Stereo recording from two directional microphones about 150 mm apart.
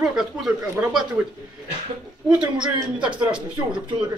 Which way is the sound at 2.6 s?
30° right (ahead or behind).